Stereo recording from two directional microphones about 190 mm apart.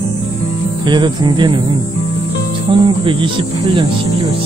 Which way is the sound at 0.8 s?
25° right (ahead or behind).